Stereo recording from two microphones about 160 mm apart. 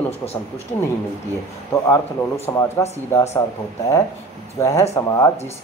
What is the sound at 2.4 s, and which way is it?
Speech, 15° left (ahead or behind).